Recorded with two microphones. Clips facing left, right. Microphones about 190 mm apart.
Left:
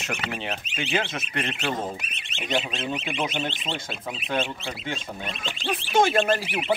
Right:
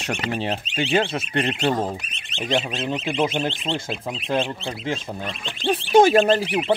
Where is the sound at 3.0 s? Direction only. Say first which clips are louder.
Right 6 dB; 40° right (ahead or behind).